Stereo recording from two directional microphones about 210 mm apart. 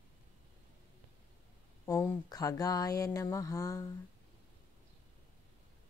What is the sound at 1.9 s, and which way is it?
Speech, 15° left (ahead or behind).